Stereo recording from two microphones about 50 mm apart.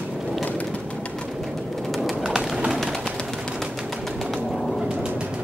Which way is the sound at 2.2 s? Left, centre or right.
Centre.